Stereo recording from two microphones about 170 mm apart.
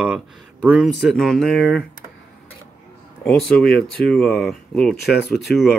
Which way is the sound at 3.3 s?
5° left (ahead or behind).